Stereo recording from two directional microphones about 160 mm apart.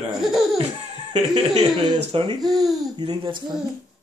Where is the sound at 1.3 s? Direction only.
40° right (ahead or behind).